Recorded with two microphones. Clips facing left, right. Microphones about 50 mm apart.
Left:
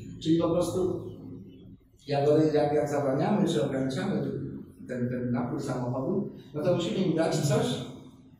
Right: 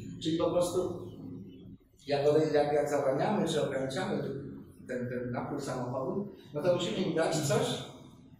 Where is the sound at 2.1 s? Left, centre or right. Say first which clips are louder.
Left 2 dB; centre.